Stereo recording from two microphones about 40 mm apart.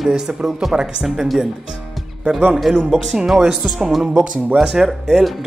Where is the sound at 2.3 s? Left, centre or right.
Right.